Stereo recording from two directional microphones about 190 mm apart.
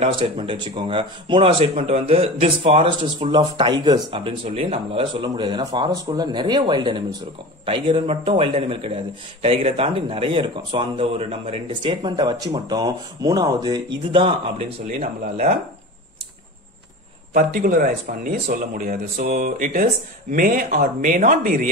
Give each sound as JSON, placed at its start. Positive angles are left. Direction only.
{"t": 0.0, "sound": "speech", "side_deg": -30}
{"t": 14.9, "sound": "speech", "side_deg": -40}
{"t": 17.3, "sound": "speech", "side_deg": -45}